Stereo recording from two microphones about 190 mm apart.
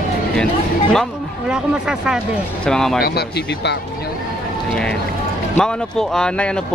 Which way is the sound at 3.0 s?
55° left (ahead or behind).